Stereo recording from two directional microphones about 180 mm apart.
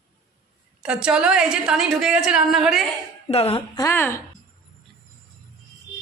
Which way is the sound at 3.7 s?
15° left (ahead or behind).